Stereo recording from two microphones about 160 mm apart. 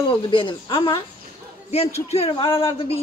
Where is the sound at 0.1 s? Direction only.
30° left (ahead or behind).